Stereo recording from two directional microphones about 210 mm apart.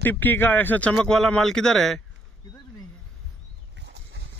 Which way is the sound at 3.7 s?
55° right (ahead or behind).